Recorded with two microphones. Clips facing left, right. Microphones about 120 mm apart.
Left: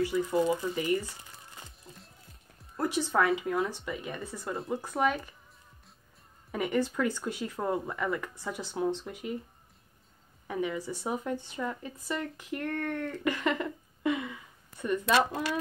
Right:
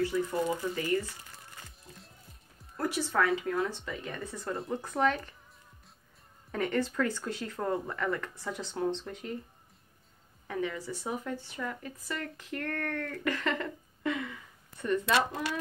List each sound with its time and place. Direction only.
0.0 s speech: 15° left (ahead or behind)
1.9 s music: centre (ahead or behind)
2.8 s speech: 20° left (ahead or behind)
6.5 s speech: 15° left (ahead or behind)
10.5 s speech: 15° left (ahead or behind)